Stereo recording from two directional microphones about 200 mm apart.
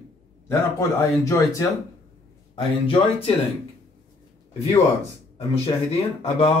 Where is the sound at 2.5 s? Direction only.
25° left (ahead or behind).